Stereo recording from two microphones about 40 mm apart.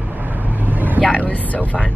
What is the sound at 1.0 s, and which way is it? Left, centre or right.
Speech, left.